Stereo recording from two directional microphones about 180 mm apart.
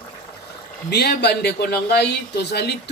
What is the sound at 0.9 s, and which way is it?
A man's voice, 65° left (ahead or behind).